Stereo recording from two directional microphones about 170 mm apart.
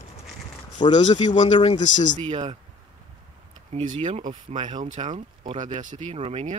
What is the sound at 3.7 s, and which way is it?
Speech, 40° right (ahead or behind).